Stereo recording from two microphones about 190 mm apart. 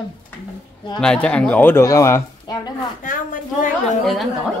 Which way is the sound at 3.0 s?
45° left (ahead or behind).